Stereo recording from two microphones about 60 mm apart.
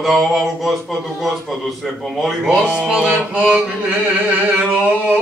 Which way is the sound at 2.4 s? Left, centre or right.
Centre.